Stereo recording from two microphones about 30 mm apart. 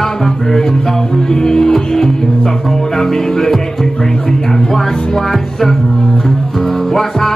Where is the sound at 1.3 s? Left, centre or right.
Centre.